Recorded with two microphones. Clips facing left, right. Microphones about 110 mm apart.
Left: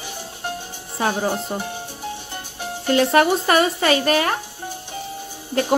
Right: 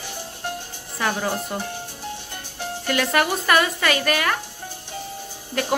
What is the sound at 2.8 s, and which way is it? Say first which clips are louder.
Speech: left 6 dB; 30° left (ahead or behind).